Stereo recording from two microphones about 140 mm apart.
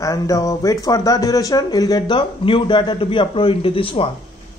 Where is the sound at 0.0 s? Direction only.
25° left (ahead or behind); by 4.1 s 40° left (ahead or behind).